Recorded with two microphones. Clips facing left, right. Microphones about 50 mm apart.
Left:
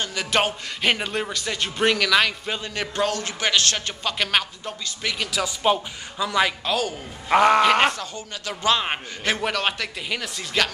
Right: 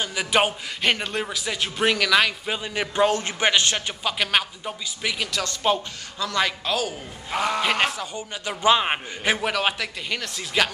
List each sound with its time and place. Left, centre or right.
0.0 s a man's voice: centre
0.8 s a man's voice: centre
3.1 s a man's voice: right
3.7 s a man's voice: centre
5.4 s a man's voice: centre
7.3 s a man's voice: left
7.8 s a man's voice: centre
8.1 s a man's voice: centre